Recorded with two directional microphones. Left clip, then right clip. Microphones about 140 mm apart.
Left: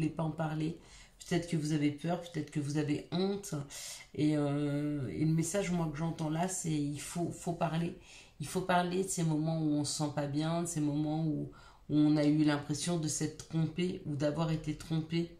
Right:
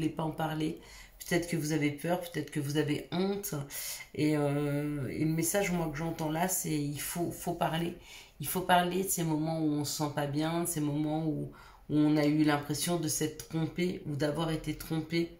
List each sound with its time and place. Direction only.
0.0 s speech: 25° left (ahead or behind)
11.9 s speech: 25° left (ahead or behind)